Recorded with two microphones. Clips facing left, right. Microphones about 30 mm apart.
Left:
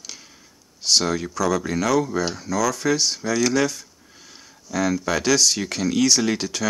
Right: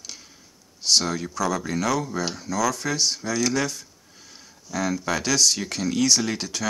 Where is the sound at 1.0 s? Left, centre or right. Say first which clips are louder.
Left 2 dB; left.